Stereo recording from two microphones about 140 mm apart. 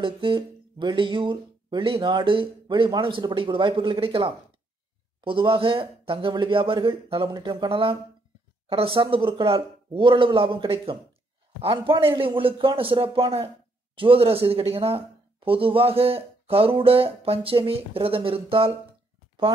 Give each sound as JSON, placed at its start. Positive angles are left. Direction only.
{"t": 0.0, "sound": "speech", "side_deg": -35}